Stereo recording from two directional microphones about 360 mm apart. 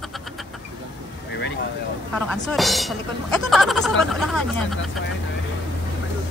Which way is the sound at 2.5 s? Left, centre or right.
Centre.